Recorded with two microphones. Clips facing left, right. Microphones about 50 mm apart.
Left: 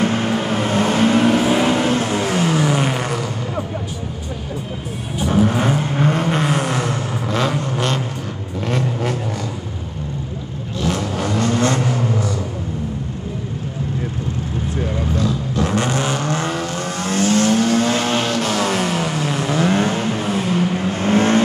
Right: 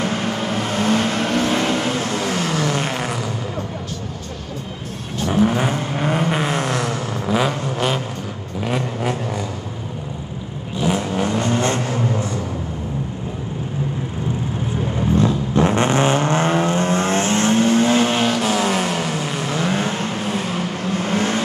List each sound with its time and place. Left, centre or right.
0.0 s vehicle: centre
5.3 s vehicle: centre
7.2 s vehicle: centre
10.8 s vehicle: centre
15.1 s vehicle: right
18.0 s vehicle: centre
21.0 s vehicle: centre